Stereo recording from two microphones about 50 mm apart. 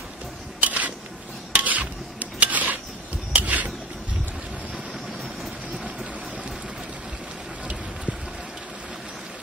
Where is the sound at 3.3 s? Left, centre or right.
Right.